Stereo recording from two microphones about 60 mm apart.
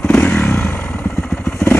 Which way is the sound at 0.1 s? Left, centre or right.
Left.